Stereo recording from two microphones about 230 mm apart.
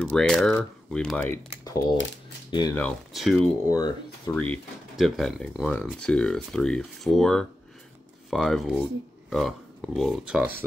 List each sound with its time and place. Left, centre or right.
0.0 s speech: centre
1.6 s a sound: centre
2.5 s speech: centre
2.8 s speech: centre
3.6 s speech: centre
4.4 s speech: centre